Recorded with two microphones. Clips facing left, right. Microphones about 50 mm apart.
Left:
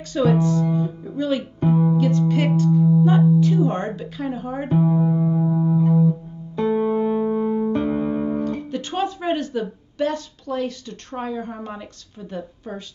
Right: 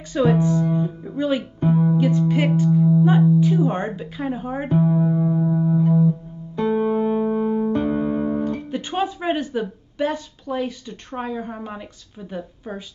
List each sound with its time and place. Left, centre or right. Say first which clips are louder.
0.1 s a woman's voice: even; centre
1.7 s music: even; centre
2.0 s speech: even; centre
4.7 s music: even; centre
6.6 s music: even; centre
7.0 s music: even; centre
7.8 s music: right 1 dB; centre
8.7 s a woman's voice: right 1 dB; centre